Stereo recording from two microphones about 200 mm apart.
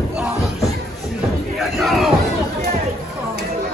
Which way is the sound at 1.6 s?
Centre (ahead or behind).